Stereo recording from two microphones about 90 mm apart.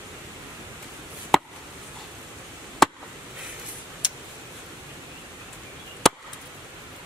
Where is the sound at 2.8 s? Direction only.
Centre (ahead or behind).